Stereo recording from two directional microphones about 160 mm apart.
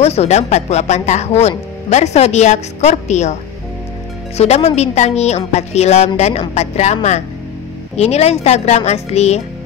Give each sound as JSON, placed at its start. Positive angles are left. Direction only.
{"t": 0.0, "sound": "a woman's voice", "side_deg": 40}
{"t": 4.4, "sound": "a woman's voice", "side_deg": 40}